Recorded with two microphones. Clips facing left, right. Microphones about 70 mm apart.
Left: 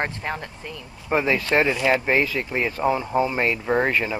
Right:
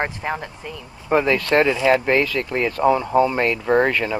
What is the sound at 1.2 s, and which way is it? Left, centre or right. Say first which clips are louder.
Speech: right 1 dB; centre.